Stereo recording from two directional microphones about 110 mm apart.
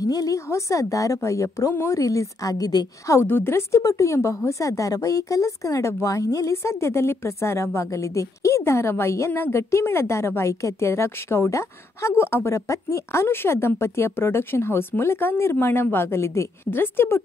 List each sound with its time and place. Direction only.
0.0 s a woman's voice: 35° left (ahead or behind)
3.2 s a woman's voice: 20° left (ahead or behind)